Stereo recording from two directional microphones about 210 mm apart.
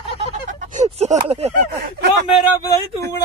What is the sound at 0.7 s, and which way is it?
Speech, 35° right (ahead or behind).